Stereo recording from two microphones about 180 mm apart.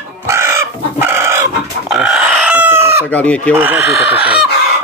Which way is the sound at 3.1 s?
10° left (ahead or behind).